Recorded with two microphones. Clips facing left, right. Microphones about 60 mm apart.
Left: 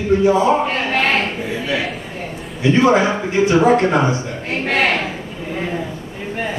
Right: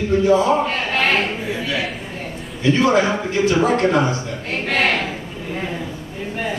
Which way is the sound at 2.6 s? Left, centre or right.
Left.